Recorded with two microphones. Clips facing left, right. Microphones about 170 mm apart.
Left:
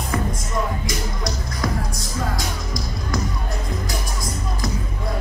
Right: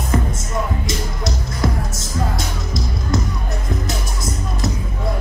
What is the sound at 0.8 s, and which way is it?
Music, 25° right (ahead or behind).